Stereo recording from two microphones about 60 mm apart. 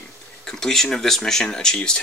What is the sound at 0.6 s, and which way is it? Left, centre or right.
Speech, centre.